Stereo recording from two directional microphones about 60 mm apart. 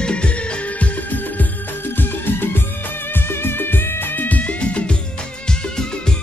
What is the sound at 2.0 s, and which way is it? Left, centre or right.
Music, left.